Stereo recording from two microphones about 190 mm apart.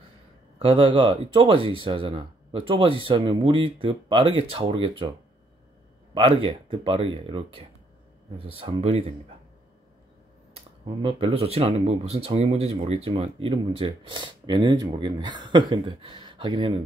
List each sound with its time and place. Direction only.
0.6 s speech: 30° right (ahead or behind)
6.1 s speech: 25° right (ahead or behind)
11.0 s speech: 30° right (ahead or behind)